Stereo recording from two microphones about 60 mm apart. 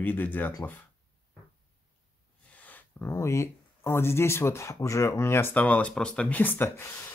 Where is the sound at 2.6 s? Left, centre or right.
Left.